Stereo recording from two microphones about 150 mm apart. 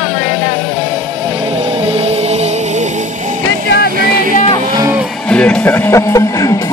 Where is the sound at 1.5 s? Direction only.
40° right (ahead or behind).